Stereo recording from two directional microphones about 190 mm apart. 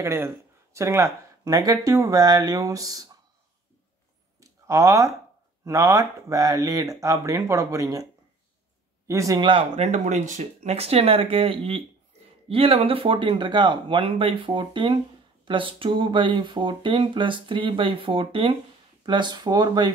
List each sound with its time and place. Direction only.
0.0 s speech: 15° right (ahead or behind)
4.4 s a sound: 15° right (ahead or behind)
5.7 s speech: 15° right (ahead or behind)